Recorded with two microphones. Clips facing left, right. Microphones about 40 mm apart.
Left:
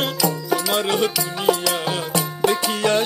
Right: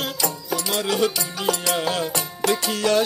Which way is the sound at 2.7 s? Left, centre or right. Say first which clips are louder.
Left 1 dB; left.